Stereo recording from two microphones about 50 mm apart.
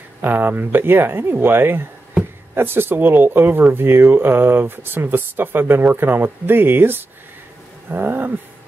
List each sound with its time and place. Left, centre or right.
0.2 s speech: right